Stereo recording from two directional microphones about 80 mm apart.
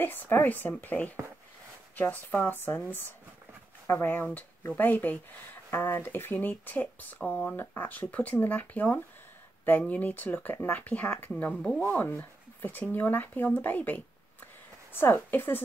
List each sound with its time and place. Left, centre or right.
0.0 s speech: left
7.5 s speech: left